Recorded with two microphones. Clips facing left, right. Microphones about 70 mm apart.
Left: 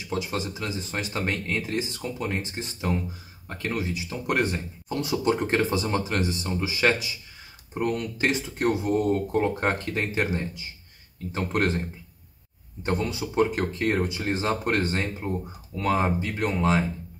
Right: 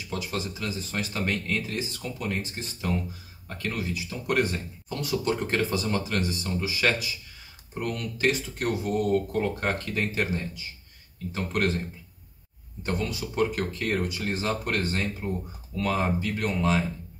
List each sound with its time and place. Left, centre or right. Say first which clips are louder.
0.1 s speech: left 3 dB; left
12.8 s speech: left 3 dB; left